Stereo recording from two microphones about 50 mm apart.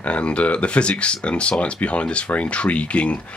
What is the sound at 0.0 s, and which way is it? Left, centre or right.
Speech, left.